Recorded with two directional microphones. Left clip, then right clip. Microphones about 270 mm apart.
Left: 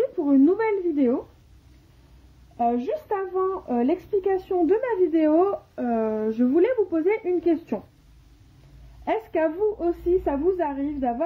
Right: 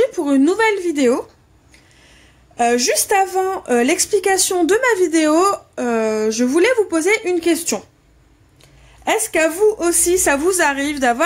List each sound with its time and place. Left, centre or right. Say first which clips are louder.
0.0 s a woman's voice: right 5 dB; right
2.5 s speech: right 8 dB; right
9.0 s speech: right 7 dB; right